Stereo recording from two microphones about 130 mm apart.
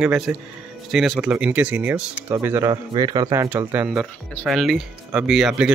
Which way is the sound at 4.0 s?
Centre (ahead or behind).